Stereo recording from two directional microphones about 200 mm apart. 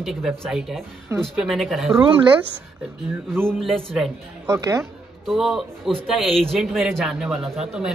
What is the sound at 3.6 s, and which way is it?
Speech, centre (ahead or behind).